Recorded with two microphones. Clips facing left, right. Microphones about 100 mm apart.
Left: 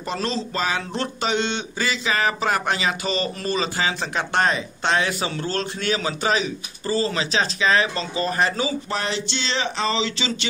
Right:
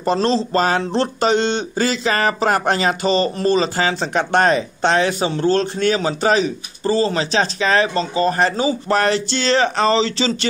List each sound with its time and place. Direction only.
0.0 s speech: 35° right (ahead or behind)
0.6 s speech: 45° right (ahead or behind)
0.9 s speech: 35° right (ahead or behind)
8.8 s speech: 50° right (ahead or behind)